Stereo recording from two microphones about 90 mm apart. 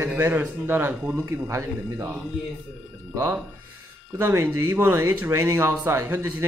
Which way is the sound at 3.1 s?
20° right (ahead or behind).